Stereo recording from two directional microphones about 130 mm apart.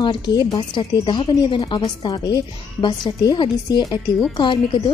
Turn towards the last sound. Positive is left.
turn(degrees=40)  # may be behind; listen again after turning